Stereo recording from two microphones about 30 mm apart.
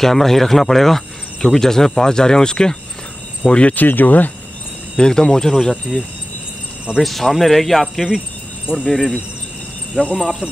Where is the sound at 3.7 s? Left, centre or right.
Left.